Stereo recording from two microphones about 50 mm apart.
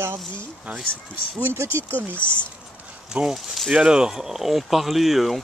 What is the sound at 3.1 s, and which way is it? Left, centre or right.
Speech, right.